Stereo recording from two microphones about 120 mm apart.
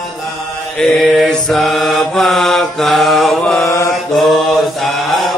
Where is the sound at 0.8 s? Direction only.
Centre (ahead or behind).